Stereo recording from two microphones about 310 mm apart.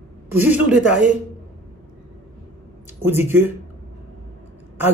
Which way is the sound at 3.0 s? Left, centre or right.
Centre.